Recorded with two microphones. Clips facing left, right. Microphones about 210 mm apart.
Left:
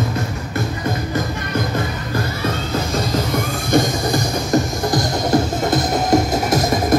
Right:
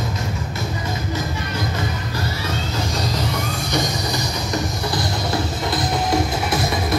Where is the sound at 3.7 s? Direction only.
50° left (ahead or behind).